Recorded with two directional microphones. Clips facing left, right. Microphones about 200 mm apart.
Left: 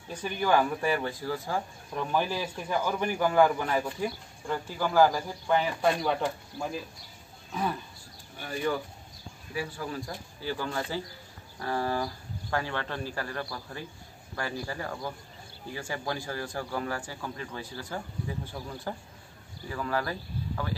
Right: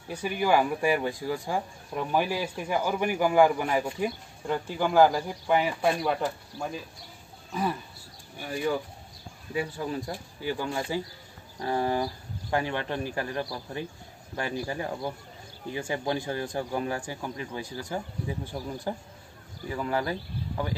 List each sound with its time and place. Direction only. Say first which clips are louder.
0.1 s a man's voice: right 2 dB; 10° right (ahead or behind)
8.4 s a man's voice: right 1 dB; 10° right (ahead or behind)
9.5 s a man's voice: right 4 dB; 20° right (ahead or behind)